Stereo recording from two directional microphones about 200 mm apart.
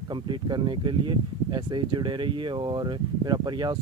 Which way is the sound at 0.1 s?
20° right (ahead or behind).